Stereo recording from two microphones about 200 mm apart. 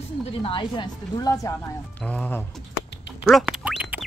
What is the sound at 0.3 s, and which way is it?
A woman's voice, 25° left (ahead or behind).